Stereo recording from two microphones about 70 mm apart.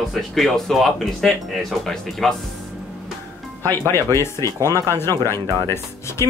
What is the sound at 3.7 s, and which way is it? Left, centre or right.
Speech, left.